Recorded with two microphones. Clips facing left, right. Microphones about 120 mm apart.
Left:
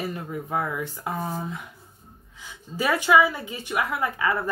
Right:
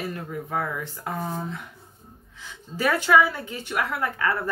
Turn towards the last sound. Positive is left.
turn(degrees=15)  # may be behind; listen again after turning